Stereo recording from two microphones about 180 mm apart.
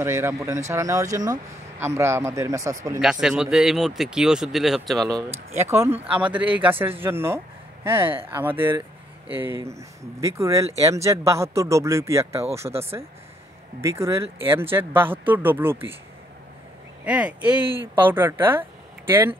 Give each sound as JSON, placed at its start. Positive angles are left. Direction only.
{"t": 0.0, "sound": "speech", "side_deg": -15}
{"t": 3.0, "sound": "speech", "side_deg": -5}
{"t": 5.0, "sound": "speech", "side_deg": -15}
{"t": 17.0, "sound": "speech", "side_deg": -5}